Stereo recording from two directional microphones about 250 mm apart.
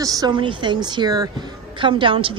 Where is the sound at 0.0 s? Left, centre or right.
Centre.